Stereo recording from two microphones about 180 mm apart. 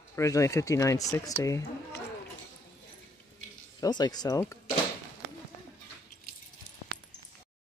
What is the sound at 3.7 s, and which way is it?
Speech, 20° left (ahead or behind).